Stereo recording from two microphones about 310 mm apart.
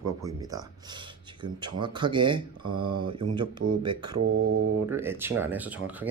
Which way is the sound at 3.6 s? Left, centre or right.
Right.